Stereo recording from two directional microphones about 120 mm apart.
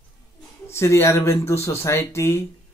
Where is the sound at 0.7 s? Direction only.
20° left (ahead or behind).